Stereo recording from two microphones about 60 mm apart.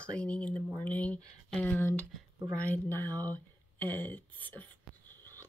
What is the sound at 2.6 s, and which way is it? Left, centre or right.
Speech, left.